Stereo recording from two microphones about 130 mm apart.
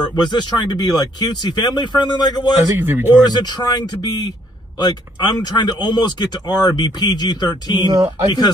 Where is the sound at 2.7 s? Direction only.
15° right (ahead or behind).